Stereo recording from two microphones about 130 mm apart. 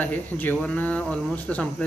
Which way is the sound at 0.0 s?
15° left (ahead or behind).